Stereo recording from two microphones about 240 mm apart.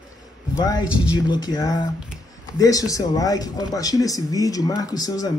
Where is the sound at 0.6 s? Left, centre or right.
Centre.